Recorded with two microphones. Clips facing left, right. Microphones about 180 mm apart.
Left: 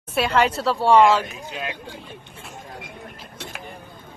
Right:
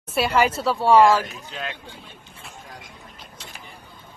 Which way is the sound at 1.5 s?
15° left (ahead or behind).